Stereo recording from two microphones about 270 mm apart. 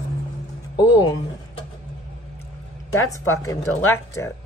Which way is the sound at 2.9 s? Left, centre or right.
Centre.